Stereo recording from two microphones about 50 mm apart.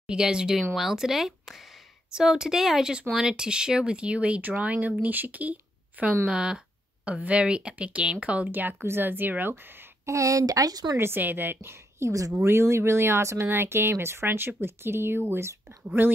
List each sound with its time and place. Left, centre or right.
0.0 s speech: centre
6.2 s speech: centre
8.5 s speech: right
10.0 s a woman's voice: right
11.0 s speech: right
11.6 s a woman's voice: right
12.4 s speech: right
16.0 s speech: right